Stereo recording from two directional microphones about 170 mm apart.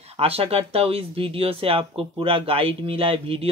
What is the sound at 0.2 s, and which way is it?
Speech, 35° right (ahead or behind).